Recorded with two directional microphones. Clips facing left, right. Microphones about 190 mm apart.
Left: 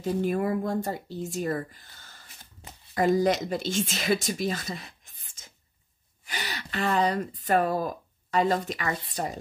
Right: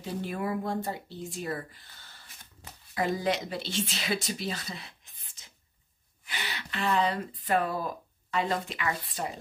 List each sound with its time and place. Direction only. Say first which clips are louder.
0.0 s speech: left 7 dB; 45° left (ahead or behind)
2.9 s speech: left 6 dB; 45° left (ahead or behind)